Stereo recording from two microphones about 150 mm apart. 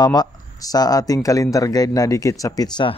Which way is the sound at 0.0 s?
25° left (ahead or behind).